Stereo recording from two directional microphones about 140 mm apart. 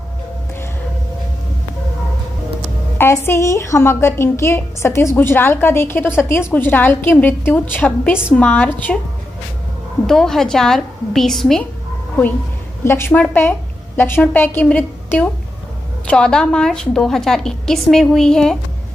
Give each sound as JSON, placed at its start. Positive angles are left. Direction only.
{"t": 3.0, "sound": "a woman's voice", "side_deg": 20}
{"t": 12.8, "sound": "a woman's voice", "side_deg": 15}